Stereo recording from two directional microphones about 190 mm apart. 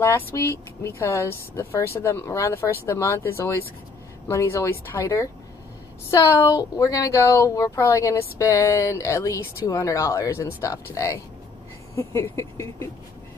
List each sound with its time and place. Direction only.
0.0 s speech: 15° left (ahead or behind)